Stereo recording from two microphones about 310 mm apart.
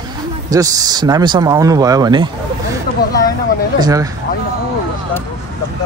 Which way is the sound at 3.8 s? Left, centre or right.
Centre.